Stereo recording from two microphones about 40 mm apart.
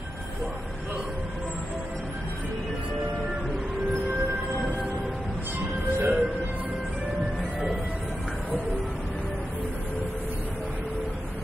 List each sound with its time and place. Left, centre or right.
5.9 s music: right